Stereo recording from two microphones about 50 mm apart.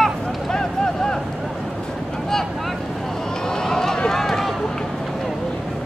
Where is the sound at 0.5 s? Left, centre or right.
Centre.